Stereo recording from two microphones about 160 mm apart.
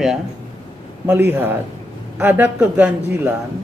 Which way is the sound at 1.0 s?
15° right (ahead or behind).